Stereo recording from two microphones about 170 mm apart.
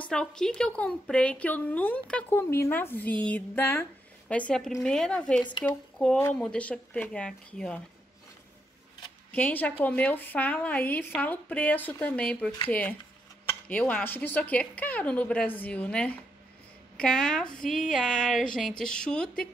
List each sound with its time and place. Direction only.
0.1 s a woman's voice: 5° left (ahead or behind)
9.3 s a woman's voice: 10° left (ahead or behind)